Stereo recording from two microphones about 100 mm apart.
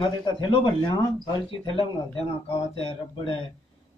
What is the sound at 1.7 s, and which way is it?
Speech, 75° left (ahead or behind).